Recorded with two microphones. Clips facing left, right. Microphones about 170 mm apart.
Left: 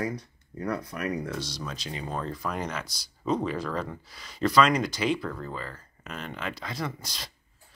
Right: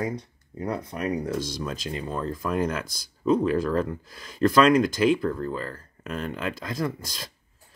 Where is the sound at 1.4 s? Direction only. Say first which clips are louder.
Right 5 dB; 45° right (ahead or behind).